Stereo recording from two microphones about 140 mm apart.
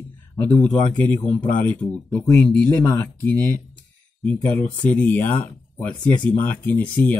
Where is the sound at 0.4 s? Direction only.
10° left (ahead or behind).